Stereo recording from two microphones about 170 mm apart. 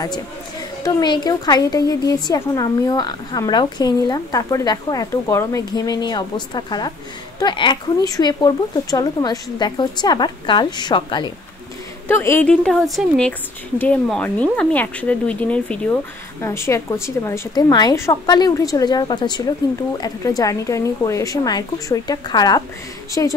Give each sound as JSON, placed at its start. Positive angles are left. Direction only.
{"t": 0.8, "sound": "a woman's voice", "side_deg": 25}
{"t": 12.1, "sound": "a woman's voice", "side_deg": 15}